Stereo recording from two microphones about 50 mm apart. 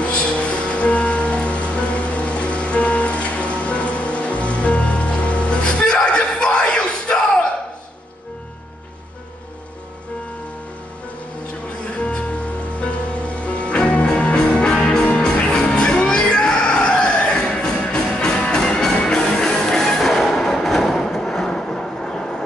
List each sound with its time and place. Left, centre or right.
0.0 s music: left
12.0 s music: left